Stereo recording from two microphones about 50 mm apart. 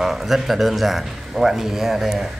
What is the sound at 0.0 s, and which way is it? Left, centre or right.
A man's voice, centre.